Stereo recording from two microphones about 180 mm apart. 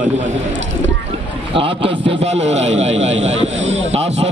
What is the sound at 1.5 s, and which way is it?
A man's voice, 30° right (ahead or behind).